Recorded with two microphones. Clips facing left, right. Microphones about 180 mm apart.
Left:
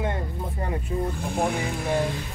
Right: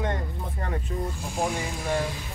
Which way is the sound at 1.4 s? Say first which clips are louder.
Left 2 dB; 60° left (ahead or behind).